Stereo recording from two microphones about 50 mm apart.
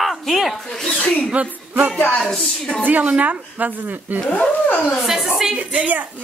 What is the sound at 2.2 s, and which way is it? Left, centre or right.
Speech, centre.